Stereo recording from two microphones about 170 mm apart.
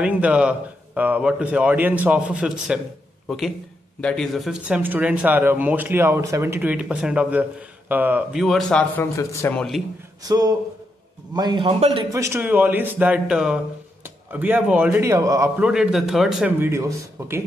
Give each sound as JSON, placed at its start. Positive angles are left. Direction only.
{"t": 0.0, "sound": "a man's voice", "side_deg": -5}
{"t": 9.6, "sound": "a man's voice", "side_deg": 0}
{"t": 10.2, "sound": "a man's voice", "side_deg": -20}
{"t": 12.1, "sound": "speech", "side_deg": -15}
{"t": 15.5, "sound": "a man's voice", "side_deg": -5}